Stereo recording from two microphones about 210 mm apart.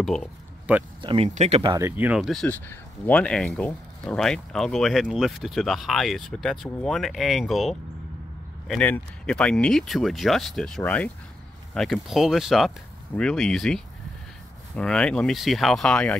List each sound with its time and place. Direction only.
0.0 s speech: centre (ahead or behind)
1.0 s speech: 30° right (ahead or behind)
1.7 s speech: 15° right (ahead or behind); by 16.2 s 5° left (ahead or behind)